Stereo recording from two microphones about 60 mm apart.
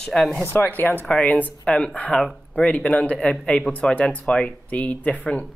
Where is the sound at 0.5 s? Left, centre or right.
Left.